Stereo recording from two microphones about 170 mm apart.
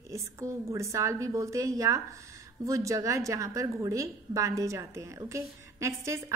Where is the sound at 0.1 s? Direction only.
15° right (ahead or behind).